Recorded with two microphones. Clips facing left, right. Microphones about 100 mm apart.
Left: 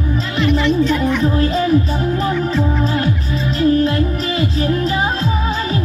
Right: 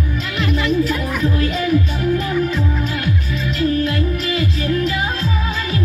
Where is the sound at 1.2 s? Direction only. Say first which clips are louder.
Left 3 dB; 30° left (ahead or behind).